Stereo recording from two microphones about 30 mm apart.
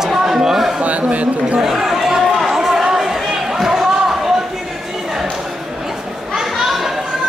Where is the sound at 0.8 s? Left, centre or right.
Right.